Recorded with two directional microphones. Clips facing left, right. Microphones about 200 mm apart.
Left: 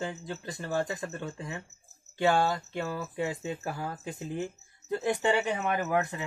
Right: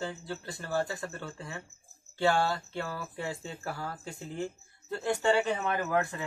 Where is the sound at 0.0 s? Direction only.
20° left (ahead or behind).